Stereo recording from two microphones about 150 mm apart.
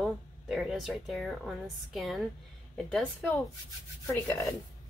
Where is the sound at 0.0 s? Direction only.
Centre (ahead or behind).